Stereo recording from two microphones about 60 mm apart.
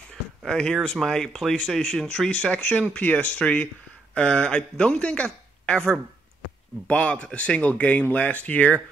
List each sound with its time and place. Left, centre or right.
0.5 s speech: centre
6.9 s speech: centre